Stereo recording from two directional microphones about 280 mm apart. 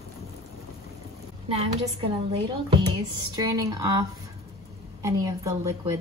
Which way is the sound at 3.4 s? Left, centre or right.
Centre.